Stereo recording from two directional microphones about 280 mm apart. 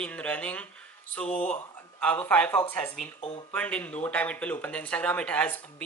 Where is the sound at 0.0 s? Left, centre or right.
Centre.